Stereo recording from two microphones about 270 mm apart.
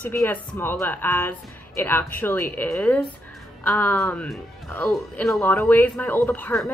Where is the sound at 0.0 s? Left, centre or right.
Centre.